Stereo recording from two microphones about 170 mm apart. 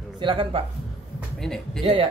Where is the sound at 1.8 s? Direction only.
30° right (ahead or behind).